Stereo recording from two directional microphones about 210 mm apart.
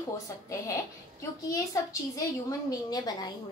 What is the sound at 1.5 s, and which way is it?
A woman's voice, 15° left (ahead or behind).